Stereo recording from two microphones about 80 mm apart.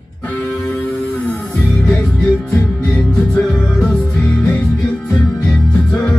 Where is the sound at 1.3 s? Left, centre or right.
Centre.